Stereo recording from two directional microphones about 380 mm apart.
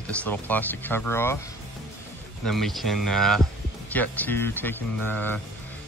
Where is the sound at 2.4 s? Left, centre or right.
Centre.